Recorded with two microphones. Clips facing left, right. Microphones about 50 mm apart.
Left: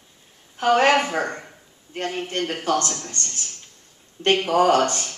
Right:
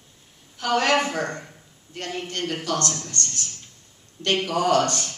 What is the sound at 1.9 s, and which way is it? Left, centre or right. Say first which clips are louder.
Speech: left 4 dB; left.